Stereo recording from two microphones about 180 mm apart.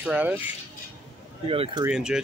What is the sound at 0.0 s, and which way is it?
Speech, 5° right (ahead or behind).